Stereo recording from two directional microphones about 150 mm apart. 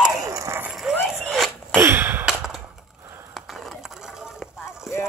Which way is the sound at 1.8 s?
15° right (ahead or behind).